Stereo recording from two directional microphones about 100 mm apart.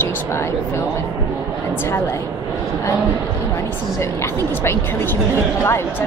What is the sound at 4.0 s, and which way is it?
A woman's voice, 25° left (ahead or behind).